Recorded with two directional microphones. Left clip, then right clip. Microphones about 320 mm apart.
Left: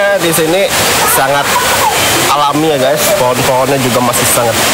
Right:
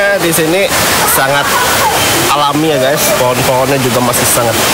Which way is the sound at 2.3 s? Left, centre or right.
Centre.